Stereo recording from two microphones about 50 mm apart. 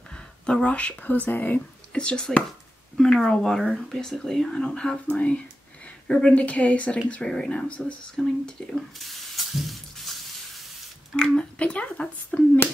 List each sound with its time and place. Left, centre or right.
0.5 s speech: left
1.9 s speech: centre
7.2 s speech: centre
8.2 s speech: centre
9.0 s spray: centre
11.1 s speech: centre